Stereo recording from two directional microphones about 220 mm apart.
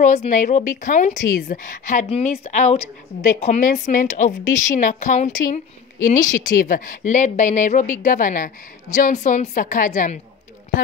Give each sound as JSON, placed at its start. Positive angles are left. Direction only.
{"t": 0.0, "sound": "a woman's voice", "side_deg": 35}